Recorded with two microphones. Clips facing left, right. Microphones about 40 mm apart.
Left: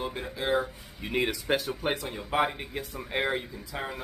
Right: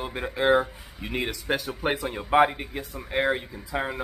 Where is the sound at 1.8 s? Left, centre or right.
Centre.